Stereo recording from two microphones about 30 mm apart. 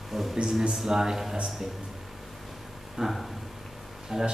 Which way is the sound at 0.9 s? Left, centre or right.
Centre.